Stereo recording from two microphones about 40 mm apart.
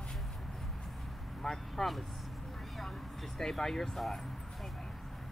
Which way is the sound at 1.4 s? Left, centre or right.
Centre.